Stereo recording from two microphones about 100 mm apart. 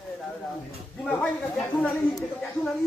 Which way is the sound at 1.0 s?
15° left (ahead or behind).